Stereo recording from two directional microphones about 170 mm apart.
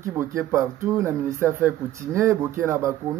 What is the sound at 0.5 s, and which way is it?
Speech, 15° right (ahead or behind).